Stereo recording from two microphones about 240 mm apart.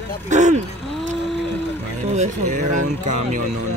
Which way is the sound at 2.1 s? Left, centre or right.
Right.